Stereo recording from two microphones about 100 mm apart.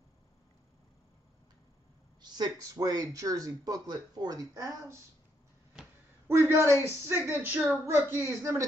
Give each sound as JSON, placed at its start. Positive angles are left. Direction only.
{"t": 2.2, "sound": "speech", "side_deg": -40}
{"t": 6.2, "sound": "speech", "side_deg": -25}